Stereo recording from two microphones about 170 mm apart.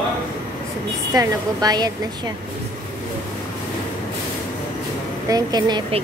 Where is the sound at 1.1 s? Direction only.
20° right (ahead or behind).